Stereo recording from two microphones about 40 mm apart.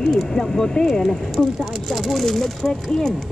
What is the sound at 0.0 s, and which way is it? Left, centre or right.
Speech, centre.